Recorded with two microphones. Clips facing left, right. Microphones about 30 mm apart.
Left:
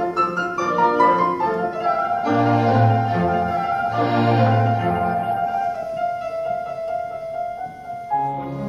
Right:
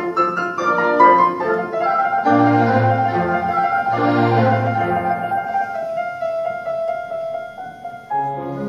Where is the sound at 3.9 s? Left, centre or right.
Centre.